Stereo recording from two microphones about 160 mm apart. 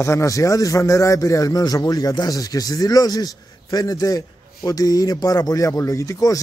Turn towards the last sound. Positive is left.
turn(degrees=20)  # may be behind; listen again after turning